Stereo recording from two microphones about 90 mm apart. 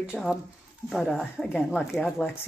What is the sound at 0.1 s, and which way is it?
Speech, centre (ahead or behind).